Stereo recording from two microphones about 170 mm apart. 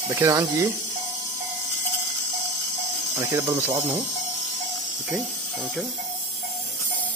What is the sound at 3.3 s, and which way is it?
Speech, 20° right (ahead or behind).